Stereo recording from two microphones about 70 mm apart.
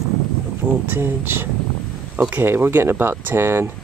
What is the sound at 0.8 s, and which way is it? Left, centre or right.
Speech, right.